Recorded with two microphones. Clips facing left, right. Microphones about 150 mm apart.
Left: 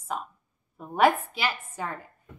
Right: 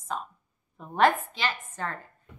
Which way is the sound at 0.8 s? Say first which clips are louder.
Left 1 dB; 5° left (ahead or behind).